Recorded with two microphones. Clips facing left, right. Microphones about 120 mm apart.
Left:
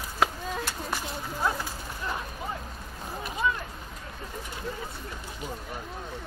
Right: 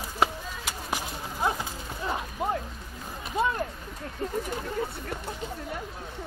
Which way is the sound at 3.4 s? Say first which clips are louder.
Right 3 dB; 50° right (ahead or behind).